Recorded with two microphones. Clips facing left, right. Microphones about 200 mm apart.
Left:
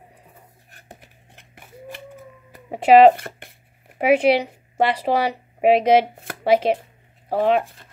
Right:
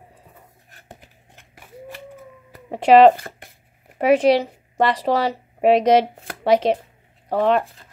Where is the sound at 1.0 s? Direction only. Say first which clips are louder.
Even; 60° left (ahead or behind).